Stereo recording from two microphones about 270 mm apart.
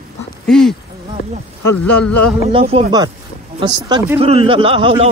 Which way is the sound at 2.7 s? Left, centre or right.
Centre.